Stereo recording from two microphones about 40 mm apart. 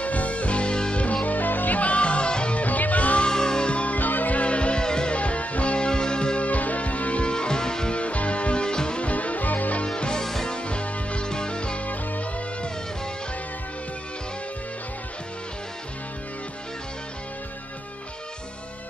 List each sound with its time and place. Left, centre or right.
0.0 s music: left
1.0 s music: left
1.8 s music: left
2.6 s music: left
3.3 s music: centre
5.1 s music: left
6.4 s music: left; by 7.9 s centre
7.9 s music: left
9.0 s music: left
9.8 s music: left
10.2 s music: centre
10.5 s music: left
11.9 s music: left